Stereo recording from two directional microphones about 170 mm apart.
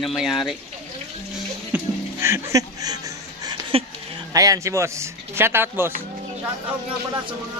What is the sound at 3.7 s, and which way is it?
Speech, 35° right (ahead or behind).